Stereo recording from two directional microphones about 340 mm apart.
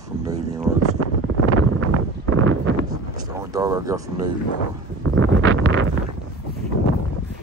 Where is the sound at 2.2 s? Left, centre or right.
Right.